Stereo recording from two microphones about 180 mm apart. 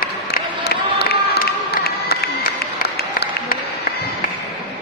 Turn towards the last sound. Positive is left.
turn(degrees=60)  # may be behind; listen again after turning